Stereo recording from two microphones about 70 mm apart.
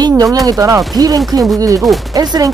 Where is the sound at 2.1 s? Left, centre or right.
Right.